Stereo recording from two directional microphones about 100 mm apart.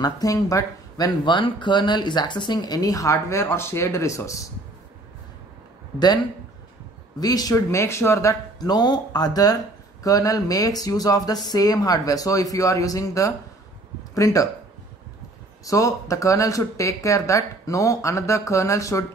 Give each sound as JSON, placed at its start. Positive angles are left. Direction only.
{"t": 0.0, "sound": "speech", "side_deg": 35}
{"t": 1.2, "sound": "speech", "side_deg": 55}
{"t": 7.2, "sound": "speech", "side_deg": 40}
{"t": 8.5, "sound": "speech", "side_deg": 45}
{"t": 15.6, "sound": "speech", "side_deg": 35}